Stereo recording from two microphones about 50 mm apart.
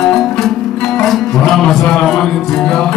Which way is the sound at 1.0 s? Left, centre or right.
Centre.